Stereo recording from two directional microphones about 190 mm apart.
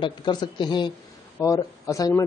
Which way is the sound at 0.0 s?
25° left (ahead or behind).